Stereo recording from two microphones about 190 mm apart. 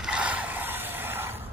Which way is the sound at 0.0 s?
5° right (ahead or behind).